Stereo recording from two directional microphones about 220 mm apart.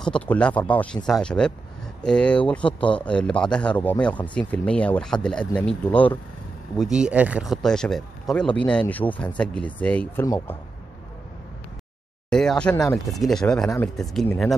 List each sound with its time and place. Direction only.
0.0 s speech: 5° left (ahead or behind)
12.3 s speech: 5° left (ahead or behind)